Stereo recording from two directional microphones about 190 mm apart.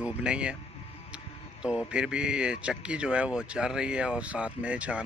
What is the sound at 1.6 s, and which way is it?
Speech, 5° right (ahead or behind).